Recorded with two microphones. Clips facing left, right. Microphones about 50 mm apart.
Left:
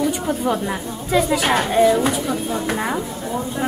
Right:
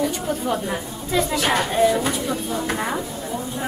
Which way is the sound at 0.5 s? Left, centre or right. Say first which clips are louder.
Left 3 dB; centre.